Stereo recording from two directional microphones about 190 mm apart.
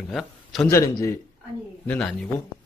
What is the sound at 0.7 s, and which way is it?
Speech, 15° left (ahead or behind).